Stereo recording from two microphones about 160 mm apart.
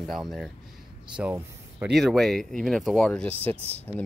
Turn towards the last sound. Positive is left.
turn(degrees=20)  # may be behind; listen again after turning